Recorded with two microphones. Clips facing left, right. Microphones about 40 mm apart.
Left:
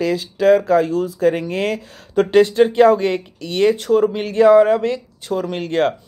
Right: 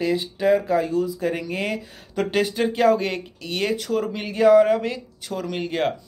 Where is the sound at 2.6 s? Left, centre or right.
Left.